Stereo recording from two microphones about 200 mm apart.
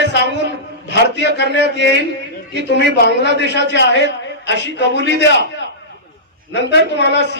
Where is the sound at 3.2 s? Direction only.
60° left (ahead or behind).